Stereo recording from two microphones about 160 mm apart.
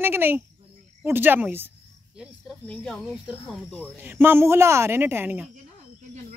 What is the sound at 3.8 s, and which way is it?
Speech, 10° right (ahead or behind).